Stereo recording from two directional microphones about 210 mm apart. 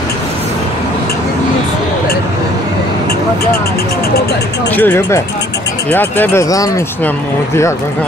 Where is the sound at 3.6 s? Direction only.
45° left (ahead or behind).